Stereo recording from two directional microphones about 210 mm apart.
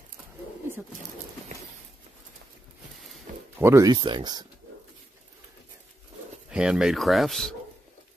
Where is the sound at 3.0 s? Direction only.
Centre (ahead or behind).